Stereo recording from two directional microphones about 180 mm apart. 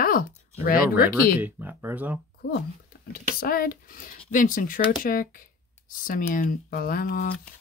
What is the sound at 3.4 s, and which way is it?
Speech, 55° left (ahead or behind).